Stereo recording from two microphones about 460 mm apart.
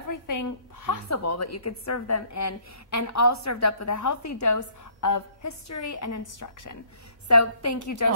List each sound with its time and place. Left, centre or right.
0.1 s a woman's voice: left